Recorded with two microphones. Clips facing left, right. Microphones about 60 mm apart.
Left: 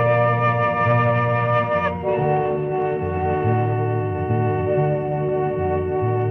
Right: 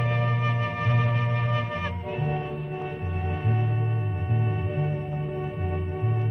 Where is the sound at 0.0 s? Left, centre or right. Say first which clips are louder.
Left 11 dB; left.